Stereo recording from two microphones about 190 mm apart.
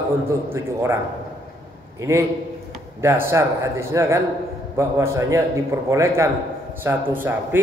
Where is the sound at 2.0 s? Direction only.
15° right (ahead or behind).